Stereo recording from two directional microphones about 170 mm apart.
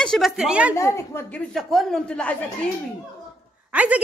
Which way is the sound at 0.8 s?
15° left (ahead or behind).